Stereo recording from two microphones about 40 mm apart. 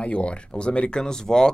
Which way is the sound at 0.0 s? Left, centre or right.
Left.